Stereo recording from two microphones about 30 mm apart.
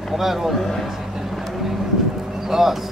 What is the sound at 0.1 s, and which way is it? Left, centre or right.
Speech, centre.